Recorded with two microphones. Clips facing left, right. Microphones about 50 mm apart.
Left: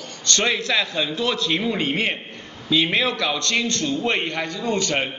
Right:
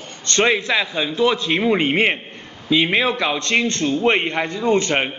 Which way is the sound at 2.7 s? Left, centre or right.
Right.